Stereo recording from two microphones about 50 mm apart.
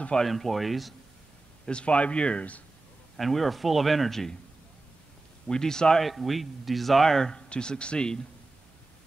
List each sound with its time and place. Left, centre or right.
0.2 s speech: centre
1.7 s speech: left
3.2 s speech: centre
5.5 s speech: centre
6.0 s speech: centre